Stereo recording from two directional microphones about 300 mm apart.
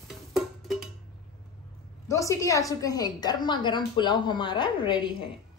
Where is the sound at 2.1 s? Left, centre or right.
Centre.